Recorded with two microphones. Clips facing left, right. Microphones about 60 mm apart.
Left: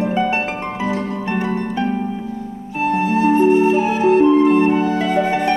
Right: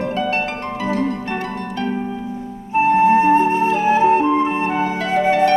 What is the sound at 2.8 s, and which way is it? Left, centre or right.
Music, right.